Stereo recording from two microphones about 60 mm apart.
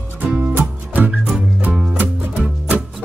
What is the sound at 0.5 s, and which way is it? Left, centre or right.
Music, right.